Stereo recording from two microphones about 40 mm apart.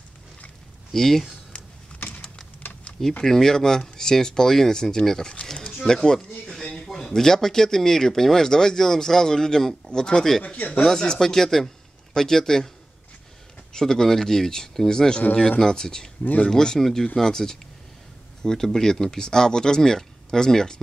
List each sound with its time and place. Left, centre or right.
0.9 s speech: centre
1.5 s a sound: left
3.3 s speech: centre
10.4 s speech: left
10.9 s speech: centre
13.7 s speech: centre